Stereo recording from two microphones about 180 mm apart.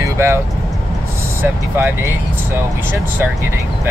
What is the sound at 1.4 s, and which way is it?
Speech, 10° right (ahead or behind).